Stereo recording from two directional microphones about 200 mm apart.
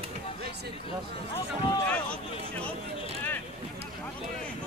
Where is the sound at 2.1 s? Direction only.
5° left (ahead or behind).